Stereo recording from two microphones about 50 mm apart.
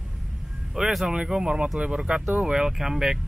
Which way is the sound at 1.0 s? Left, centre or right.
Centre.